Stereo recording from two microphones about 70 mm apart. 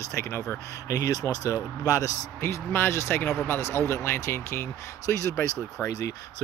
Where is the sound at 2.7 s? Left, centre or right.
Left.